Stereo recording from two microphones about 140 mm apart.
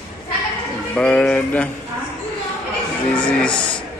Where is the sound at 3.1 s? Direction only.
5° left (ahead or behind).